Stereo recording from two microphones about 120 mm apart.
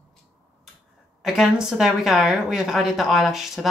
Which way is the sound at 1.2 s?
Centre (ahead or behind).